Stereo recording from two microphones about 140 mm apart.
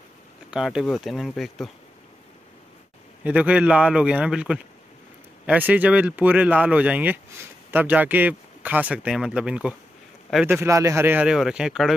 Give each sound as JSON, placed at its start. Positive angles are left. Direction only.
{"t": 0.5, "sound": "speech", "side_deg": -5}
{"t": 3.3, "sound": "speech", "side_deg": -10}
{"t": 11.2, "sound": "speech", "side_deg": -5}